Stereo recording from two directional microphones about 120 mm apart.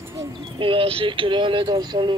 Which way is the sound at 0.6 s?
45° right (ahead or behind).